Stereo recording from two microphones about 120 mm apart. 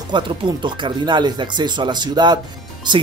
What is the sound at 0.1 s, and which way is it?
Speech, 40° right (ahead or behind).